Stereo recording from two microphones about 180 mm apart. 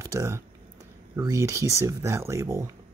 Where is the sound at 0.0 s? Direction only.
15° right (ahead or behind).